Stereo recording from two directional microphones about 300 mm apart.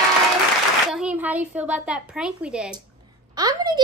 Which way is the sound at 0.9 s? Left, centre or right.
Centre.